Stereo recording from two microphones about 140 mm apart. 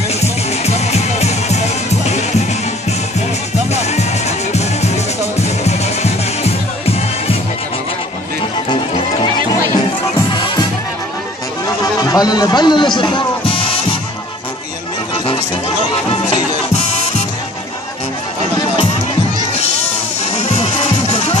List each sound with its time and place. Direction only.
0.2 s music: 50° left (ahead or behind)
4.5 s music: 50° left (ahead or behind)
10.3 s music: 35° left (ahead or behind)
11.8 s music: 25° left (ahead or behind)
16.1 s music: 50° left (ahead or behind)
20.3 s music: 50° left (ahead or behind)